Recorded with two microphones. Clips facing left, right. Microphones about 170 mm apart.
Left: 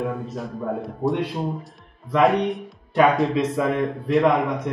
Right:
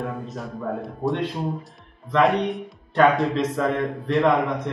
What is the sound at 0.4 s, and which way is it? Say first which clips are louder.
Speech: right 1 dB; centre (ahead or behind).